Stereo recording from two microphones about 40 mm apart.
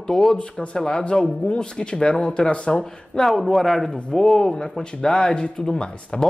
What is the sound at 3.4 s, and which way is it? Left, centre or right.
A man's voice, centre.